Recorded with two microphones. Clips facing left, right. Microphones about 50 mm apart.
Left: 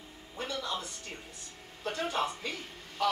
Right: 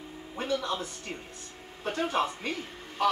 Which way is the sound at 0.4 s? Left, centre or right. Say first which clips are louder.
Right 5 dB; right.